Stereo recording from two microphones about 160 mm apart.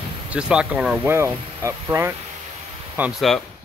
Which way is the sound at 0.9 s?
15° right (ahead or behind).